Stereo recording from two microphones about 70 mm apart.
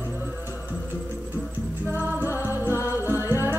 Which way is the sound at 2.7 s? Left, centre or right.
Left.